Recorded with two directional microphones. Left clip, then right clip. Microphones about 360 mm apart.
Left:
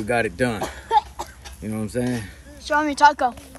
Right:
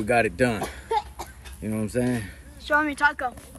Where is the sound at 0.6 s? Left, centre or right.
Left.